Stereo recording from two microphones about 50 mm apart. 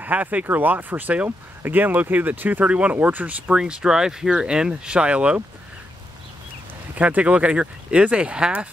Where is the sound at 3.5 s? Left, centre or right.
Centre.